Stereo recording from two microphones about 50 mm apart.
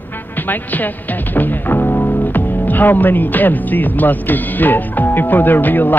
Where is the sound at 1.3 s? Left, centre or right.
Left.